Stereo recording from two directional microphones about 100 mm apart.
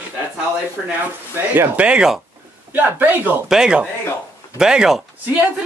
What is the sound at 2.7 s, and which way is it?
Speech, 20° right (ahead or behind).